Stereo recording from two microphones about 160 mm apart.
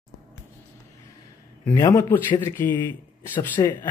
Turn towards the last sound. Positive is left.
turn(degrees=15)  # may be behind; listen again after turning